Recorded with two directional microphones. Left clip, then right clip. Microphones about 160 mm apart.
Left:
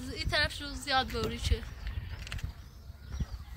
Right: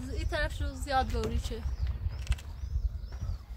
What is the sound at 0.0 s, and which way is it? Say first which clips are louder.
A woman's voice: left 4 dB; 70° right (ahead or behind).